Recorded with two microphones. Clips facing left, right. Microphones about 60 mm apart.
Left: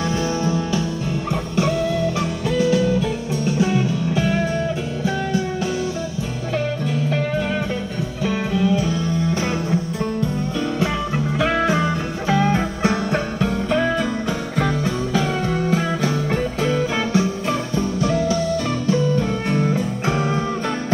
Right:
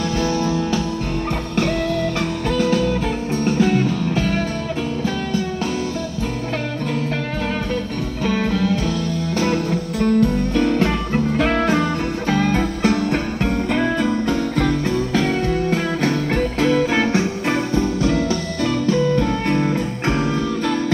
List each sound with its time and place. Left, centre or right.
1.6 s music: right
8.2 s music: right
8.8 s music: left
9.7 s music: right
12.5 s music: left
13.1 s music: right
15.7 s music: right
18.9 s music: right